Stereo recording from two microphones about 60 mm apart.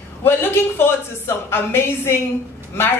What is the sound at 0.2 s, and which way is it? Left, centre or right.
Speech, left.